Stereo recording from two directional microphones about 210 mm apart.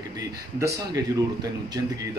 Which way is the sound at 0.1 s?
15° right (ahead or behind).